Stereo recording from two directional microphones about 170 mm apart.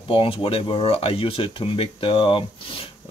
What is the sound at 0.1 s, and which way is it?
Speech, 30° left (ahead or behind).